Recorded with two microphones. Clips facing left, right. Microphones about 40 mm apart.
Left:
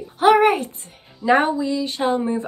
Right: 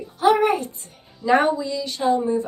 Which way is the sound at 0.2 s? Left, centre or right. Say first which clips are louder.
Left 3 dB; left.